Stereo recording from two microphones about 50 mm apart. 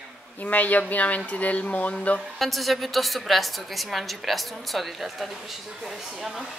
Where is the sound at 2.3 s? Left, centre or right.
Centre.